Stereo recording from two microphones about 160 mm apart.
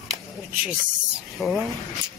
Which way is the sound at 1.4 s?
Centre (ahead or behind).